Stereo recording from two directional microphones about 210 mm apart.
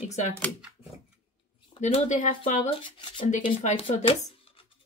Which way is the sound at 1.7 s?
35° left (ahead or behind).